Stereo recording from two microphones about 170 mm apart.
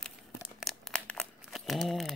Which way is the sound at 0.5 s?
Centre (ahead or behind).